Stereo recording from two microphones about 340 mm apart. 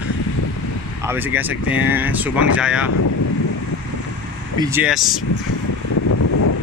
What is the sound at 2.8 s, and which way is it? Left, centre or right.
Speech, left.